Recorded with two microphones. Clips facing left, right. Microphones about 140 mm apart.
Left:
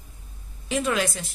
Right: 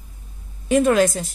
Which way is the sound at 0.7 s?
50° right (ahead or behind).